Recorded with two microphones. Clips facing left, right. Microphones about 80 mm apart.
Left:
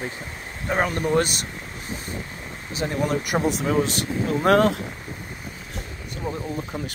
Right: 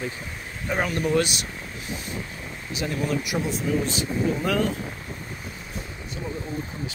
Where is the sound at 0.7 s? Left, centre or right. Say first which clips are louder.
Left 2 dB; left.